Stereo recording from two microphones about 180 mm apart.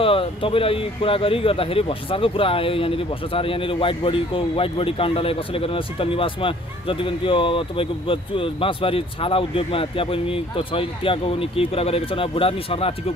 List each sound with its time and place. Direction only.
0.0 s a man's voice: 30° left (ahead or behind)